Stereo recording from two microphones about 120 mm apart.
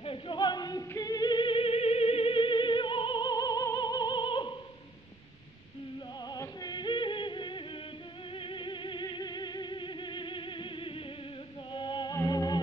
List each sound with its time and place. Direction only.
0.0 s music: 45° left (ahead or behind)
6.2 s music: 30° left (ahead or behind)